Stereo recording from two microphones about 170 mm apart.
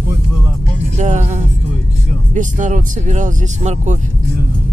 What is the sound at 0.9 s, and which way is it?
Speech, 45° right (ahead or behind).